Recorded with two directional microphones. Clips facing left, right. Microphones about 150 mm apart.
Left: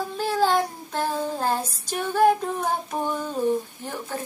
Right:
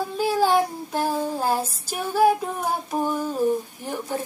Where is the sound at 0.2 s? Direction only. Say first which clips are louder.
Right 2 dB; 10° right (ahead or behind).